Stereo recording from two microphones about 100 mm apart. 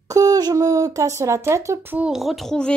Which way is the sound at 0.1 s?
40° right (ahead or behind).